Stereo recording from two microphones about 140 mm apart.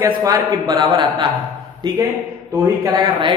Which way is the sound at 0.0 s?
25° right (ahead or behind).